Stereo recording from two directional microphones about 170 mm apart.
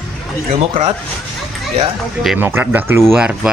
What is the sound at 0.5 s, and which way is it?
Speech, 35° right (ahead or behind).